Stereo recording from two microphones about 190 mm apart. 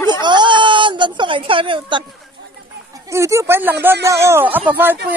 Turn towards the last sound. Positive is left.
turn(degrees=-10)  # may be behind; listen again after turning